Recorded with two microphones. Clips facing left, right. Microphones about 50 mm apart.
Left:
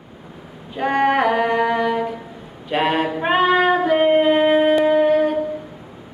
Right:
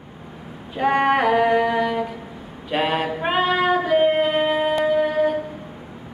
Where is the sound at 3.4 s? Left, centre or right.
Centre.